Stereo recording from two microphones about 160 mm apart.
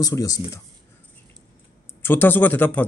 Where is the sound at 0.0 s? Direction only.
20° left (ahead or behind).